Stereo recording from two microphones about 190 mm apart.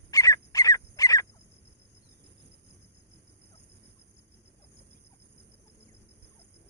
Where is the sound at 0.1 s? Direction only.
15° left (ahead or behind).